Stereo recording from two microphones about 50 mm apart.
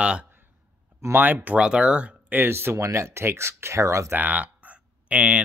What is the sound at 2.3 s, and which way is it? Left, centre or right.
Speech, right.